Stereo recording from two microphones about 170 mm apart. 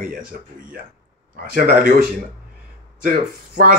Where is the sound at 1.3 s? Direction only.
65° right (ahead or behind).